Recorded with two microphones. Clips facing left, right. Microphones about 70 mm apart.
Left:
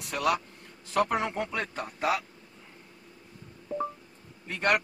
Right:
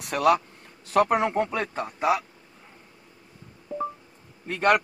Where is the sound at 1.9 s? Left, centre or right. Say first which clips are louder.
Right 5 dB; centre.